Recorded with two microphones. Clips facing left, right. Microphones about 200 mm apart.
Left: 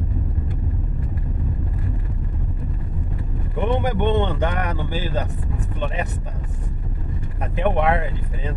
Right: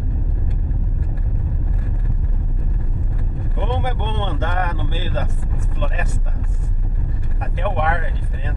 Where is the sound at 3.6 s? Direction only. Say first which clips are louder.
Left 4 dB; 15° left (ahead or behind).